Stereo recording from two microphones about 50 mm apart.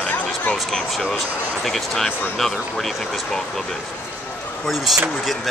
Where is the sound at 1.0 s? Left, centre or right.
Centre.